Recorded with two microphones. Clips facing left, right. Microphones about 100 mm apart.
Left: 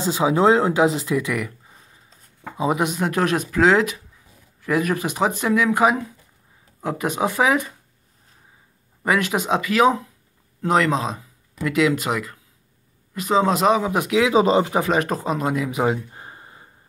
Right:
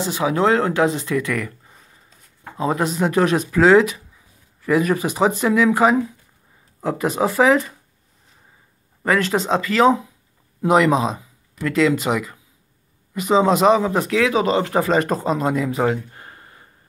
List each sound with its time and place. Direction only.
0.0 s speech: 20° left (ahead or behind); by 7.6 s 5° left (ahead or behind)
9.0 s speech: 10° left (ahead or behind)
10.6 s speech: 5° right (ahead or behind)
11.6 s speech: 5° left (ahead or behind)
14.2 s speech: 20° left (ahead or behind)
14.7 s speech: 5° left (ahead or behind)
15.9 s a sound: 20° left (ahead or behind)